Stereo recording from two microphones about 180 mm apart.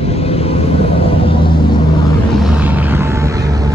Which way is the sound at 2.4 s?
5° right (ahead or behind).